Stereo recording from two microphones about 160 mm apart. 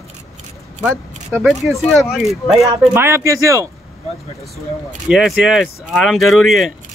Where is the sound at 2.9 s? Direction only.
15° right (ahead or behind).